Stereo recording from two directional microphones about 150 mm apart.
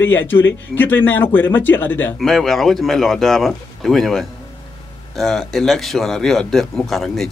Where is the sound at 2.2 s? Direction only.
Centre (ahead or behind).